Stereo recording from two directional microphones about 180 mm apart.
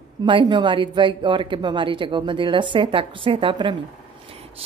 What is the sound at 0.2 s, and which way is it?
Speech, 25° right (ahead or behind).